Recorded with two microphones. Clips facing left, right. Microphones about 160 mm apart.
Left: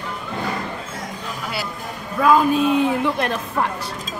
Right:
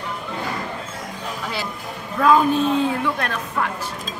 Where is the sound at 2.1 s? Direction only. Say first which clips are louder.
Even; 10° left (ahead or behind); by 3.7 s 25° left (ahead or behind).